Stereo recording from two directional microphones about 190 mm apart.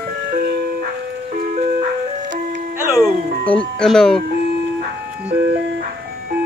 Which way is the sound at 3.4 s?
5° left (ahead or behind).